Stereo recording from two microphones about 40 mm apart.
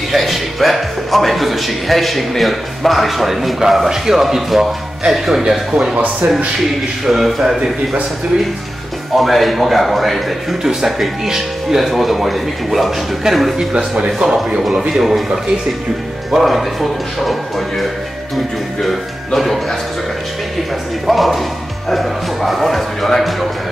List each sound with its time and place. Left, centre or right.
0.1 s a man's voice: centre
7.1 s speech: centre
9.1 s speech: centre
10.6 s speech: centre
13.7 s speech: right
14.9 s speech: centre
16.3 s speech: centre
21.1 s speech: centre
21.8 s music: centre